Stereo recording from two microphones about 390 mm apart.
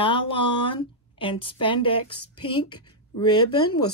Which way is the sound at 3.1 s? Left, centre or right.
Left.